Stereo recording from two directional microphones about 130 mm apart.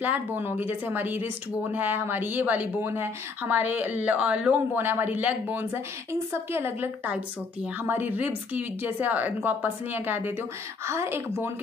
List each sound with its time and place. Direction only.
0.0 s a woman's voice: 15° right (ahead or behind)